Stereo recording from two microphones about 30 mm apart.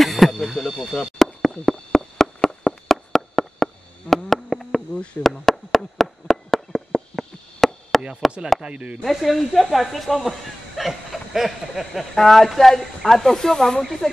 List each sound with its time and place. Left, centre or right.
0.0 s a sound: centre
8.2 s chop: centre
8.6 s speech: right
9.0 s speech: centre
10.8 s a sound: centre
11.3 s speech: centre
12.2 s speech: centre